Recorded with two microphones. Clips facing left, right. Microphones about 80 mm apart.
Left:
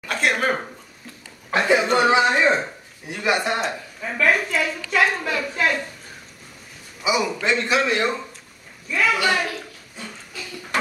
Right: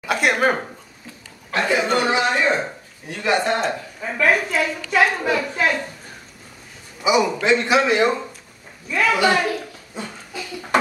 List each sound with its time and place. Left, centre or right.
0.0 s a man's voice: centre
1.7 s speech: centre
2.0 s speech: left
4.0 s a man's voice: centre
7.0 s a man's voice: centre
9.1 s a woman's voice: right
9.9 s a sound: right